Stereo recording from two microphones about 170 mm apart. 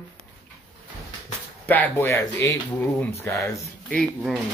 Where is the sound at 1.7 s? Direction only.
15° left (ahead or behind).